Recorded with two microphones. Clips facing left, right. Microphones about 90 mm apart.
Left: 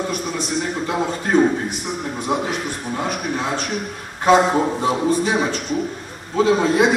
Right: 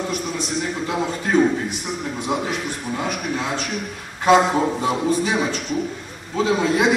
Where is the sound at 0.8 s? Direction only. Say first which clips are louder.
Left 1 dB; 35° left (ahead or behind).